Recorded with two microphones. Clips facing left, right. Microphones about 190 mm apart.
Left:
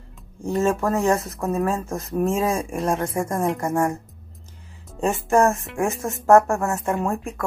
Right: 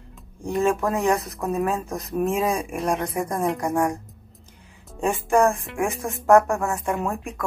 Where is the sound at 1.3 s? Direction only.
Centre (ahead or behind).